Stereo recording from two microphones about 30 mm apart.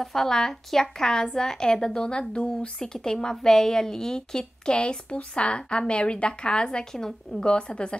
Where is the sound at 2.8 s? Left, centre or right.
Left.